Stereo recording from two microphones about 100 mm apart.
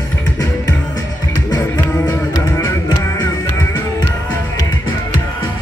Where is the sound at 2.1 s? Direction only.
30° left (ahead or behind).